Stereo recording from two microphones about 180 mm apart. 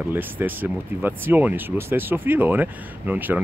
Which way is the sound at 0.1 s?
10° right (ahead or behind).